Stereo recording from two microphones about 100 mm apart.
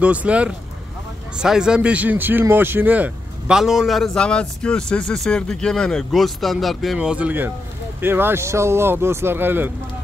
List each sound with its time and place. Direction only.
0.0 s a man's voice: 15° right (ahead or behind)
3.5 s a man's voice: 5° right (ahead or behind); by 9.7 s 20° right (ahead or behind)